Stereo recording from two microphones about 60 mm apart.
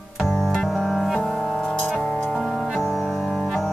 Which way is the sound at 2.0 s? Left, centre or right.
Centre.